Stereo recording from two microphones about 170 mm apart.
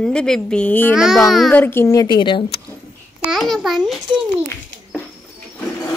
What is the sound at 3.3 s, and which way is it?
Speech, centre (ahead or behind).